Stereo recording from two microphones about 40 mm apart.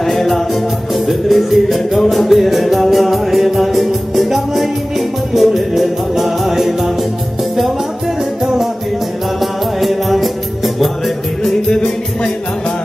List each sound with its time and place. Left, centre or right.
0.0 s music: centre
9.4 s music: centre
11.7 s music: centre